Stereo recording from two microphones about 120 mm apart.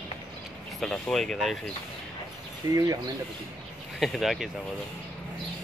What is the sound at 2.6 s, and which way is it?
Speech, 30° right (ahead or behind).